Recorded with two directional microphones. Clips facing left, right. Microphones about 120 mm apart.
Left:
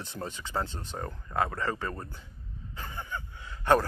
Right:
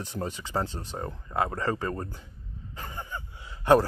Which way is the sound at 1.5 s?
35° right (ahead or behind).